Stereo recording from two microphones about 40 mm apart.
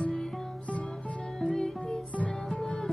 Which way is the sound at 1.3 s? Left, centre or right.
Centre.